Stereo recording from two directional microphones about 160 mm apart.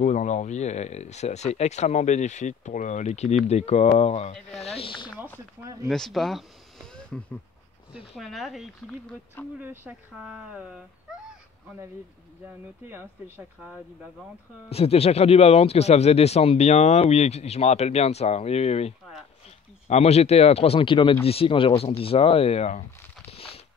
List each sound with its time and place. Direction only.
0.0 s speech: 50° left (ahead or behind); by 5.1 s 30° left (ahead or behind)
5.6 s speech: 20° right (ahead or behind)
5.9 s a sound: centre (ahead or behind)
8.2 s speech: centre (ahead or behind)
9.6 s speech: 10° right (ahead or behind)
12.8 s speech: 15° right (ahead or behind)
14.7 s speech: 40° left (ahead or behind)
23.3 s a sound: 35° left (ahead or behind)